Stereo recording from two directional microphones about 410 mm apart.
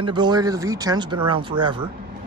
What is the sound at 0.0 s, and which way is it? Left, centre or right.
A man's voice, centre.